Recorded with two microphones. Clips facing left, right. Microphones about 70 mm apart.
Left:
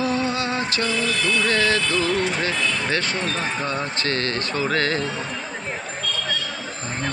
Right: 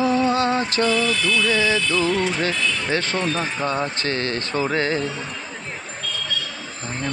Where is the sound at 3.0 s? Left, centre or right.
Right.